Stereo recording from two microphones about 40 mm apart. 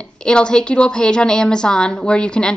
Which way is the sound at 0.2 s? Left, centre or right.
Left.